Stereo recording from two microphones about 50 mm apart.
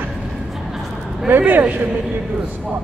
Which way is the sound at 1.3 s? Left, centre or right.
Right.